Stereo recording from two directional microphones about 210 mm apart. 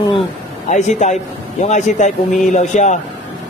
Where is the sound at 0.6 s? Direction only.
35° left (ahead or behind).